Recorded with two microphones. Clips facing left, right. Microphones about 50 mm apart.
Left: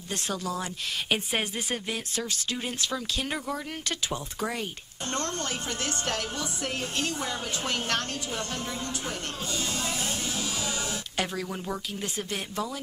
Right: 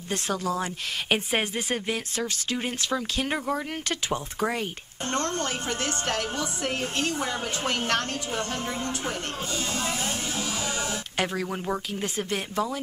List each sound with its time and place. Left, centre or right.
0.1 s a woman's voice: right